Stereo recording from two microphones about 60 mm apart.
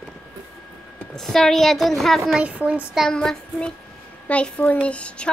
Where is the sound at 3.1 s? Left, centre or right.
Centre.